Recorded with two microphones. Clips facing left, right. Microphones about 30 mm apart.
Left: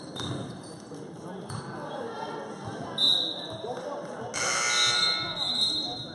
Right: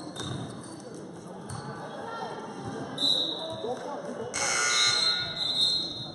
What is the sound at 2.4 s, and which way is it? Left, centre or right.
Music, centre.